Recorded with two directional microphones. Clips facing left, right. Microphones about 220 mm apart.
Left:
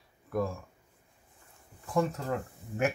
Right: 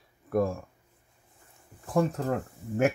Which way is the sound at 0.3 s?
50° right (ahead or behind).